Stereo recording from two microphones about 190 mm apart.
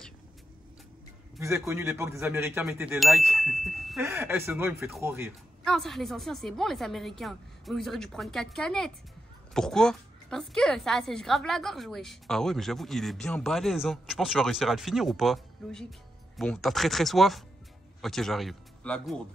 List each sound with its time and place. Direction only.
1.7 s a man's voice: 15° right (ahead or behind)
4.0 s a man's voice: 10° right (ahead or behind)
5.6 s a woman's voice: centre (ahead or behind)